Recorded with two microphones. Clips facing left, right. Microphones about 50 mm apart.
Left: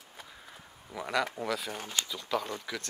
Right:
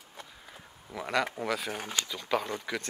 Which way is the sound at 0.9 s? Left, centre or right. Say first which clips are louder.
Right 1 dB; centre.